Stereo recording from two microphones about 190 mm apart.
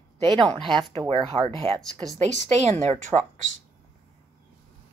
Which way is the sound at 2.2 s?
35° right (ahead or behind).